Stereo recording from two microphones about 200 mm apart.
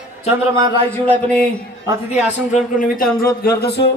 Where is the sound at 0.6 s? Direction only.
25° right (ahead or behind).